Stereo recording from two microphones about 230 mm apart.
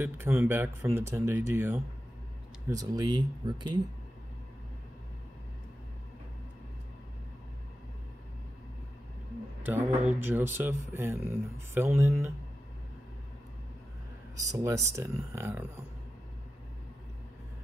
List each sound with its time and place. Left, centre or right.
0.0 s speech: centre
10.0 s speech: centre
14.3 s speech: centre